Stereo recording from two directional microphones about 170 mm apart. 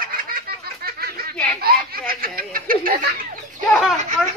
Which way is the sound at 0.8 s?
65° right (ahead or behind).